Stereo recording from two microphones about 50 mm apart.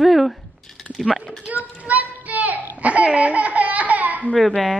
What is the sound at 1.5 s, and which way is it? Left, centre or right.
Child singing, right.